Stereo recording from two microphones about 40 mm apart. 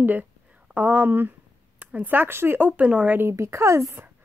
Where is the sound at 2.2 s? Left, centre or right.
Right.